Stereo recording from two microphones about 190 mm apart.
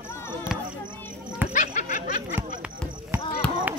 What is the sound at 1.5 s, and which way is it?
Snicker, 40° left (ahead or behind).